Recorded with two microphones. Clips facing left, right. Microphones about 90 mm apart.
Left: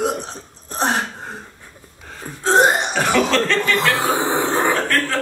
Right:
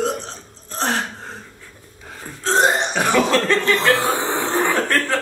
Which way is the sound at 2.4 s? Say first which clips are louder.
Left 3 dB; 15° left (ahead or behind).